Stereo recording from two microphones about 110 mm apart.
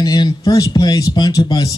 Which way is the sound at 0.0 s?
35° left (ahead or behind).